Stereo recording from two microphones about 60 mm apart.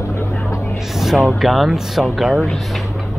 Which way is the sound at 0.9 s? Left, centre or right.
Centre.